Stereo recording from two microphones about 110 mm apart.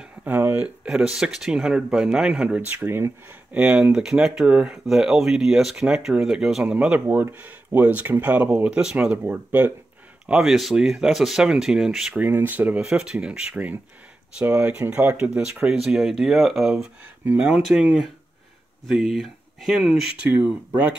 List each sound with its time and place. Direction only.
0.2 s speech: 20° right (ahead or behind)
0.8 s speech: 5° right (ahead or behind)
2.7 s speech: 20° right (ahead or behind)
10.2 s speech: 5° right (ahead or behind)
12.2 s speech: 20° right (ahead or behind)